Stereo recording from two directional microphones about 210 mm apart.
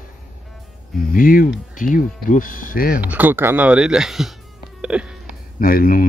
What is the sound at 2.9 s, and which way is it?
Speech, 5° right (ahead or behind).